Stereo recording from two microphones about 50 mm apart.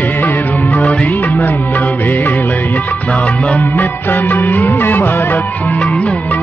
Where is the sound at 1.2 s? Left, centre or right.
Left.